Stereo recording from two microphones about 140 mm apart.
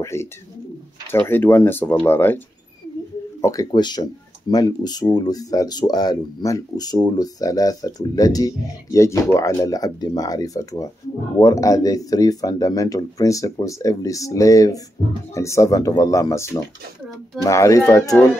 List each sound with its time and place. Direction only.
0.0 s speech: 20° left (ahead or behind)